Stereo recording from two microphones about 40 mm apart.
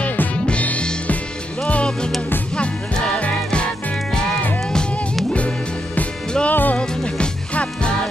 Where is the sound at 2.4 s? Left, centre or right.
Left.